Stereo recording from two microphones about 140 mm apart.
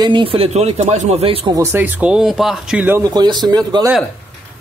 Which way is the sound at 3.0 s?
30° right (ahead or behind).